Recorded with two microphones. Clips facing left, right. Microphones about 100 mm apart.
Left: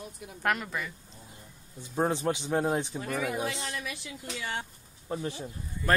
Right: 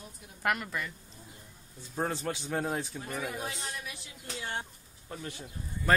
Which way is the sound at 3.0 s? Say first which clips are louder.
Left 5 dB; 80° left.